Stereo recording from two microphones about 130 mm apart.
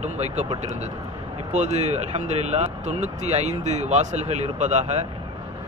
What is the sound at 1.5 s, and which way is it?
Speech, 60° right (ahead or behind).